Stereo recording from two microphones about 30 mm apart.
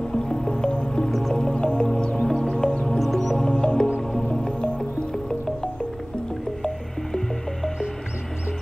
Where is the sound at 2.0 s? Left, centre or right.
Left.